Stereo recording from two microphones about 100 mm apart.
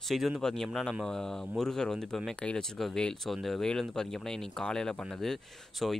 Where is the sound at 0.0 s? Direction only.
Centre (ahead or behind).